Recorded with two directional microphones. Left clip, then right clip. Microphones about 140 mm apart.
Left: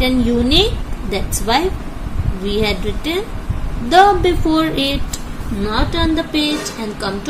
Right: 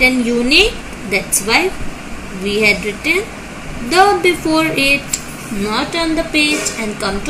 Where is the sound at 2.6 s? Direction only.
15° left (ahead or behind).